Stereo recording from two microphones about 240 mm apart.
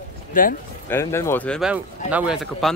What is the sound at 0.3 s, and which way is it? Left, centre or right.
Speech, left.